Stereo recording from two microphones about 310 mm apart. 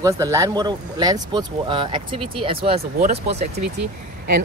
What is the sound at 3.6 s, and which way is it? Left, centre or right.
Speech, right.